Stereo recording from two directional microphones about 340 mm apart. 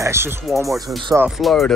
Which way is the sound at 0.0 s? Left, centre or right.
Centre.